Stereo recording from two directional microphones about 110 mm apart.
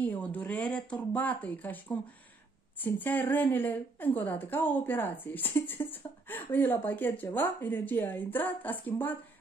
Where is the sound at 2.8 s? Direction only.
15° left (ahead or behind).